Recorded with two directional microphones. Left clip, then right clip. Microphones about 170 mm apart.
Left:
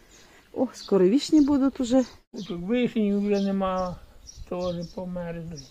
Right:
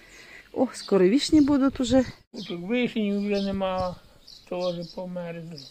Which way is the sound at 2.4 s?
65° left (ahead or behind).